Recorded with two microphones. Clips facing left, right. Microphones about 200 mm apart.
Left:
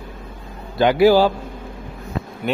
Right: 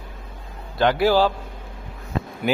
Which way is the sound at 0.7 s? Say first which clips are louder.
Left 5 dB; 5° left (ahead or behind).